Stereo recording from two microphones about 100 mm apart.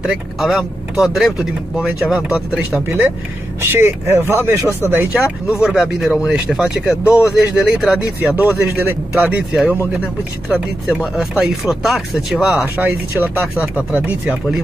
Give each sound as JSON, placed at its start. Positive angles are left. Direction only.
{"t": 0.0, "sound": "speech", "side_deg": -5}
{"t": 3.6, "sound": "speech", "side_deg": -25}
{"t": 5.1, "sound": "speech", "side_deg": -5}